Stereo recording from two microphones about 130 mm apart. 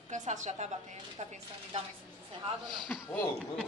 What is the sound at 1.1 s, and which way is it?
Speech, 55° right (ahead or behind).